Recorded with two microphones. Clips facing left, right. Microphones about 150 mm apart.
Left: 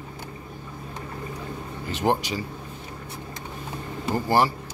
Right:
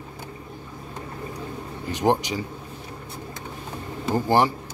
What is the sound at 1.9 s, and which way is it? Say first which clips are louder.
Speech: right 2 dB; 15° right (ahead or behind).